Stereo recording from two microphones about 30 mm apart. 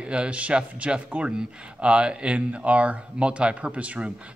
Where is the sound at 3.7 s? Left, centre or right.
Right.